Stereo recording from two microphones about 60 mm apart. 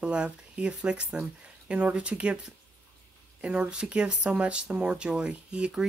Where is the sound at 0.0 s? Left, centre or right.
Centre.